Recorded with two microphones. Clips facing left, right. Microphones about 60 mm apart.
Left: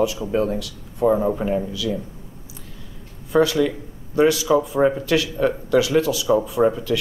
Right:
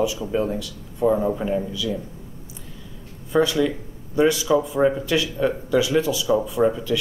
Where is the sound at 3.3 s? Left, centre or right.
Centre.